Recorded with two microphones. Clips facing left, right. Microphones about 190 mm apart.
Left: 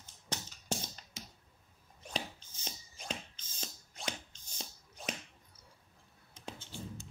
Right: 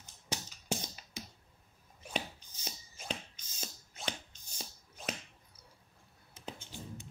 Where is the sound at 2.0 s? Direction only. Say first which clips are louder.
Right 2 dB; 5° right (ahead or behind).